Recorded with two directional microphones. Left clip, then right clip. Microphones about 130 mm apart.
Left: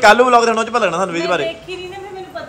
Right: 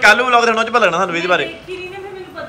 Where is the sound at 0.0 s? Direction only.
35° left (ahead or behind).